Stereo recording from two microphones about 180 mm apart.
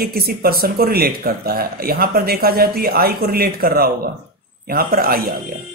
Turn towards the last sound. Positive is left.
turn(degrees=-55)  # may be behind; listen again after turning